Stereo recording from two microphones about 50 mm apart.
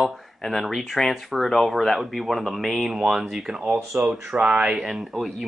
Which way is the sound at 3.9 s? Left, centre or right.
Right.